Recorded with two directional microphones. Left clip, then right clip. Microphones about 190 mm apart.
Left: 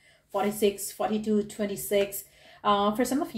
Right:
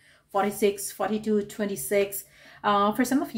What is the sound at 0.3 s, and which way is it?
A woman's voice, 35° right (ahead or behind).